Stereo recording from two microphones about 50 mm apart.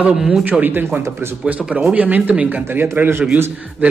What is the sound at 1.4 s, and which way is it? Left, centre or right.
Speech, right.